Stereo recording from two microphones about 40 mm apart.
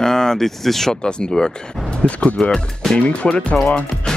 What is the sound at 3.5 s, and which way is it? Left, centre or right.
Speech, left.